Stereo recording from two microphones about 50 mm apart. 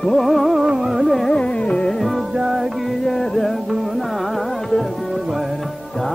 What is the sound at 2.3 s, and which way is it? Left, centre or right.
Music, centre.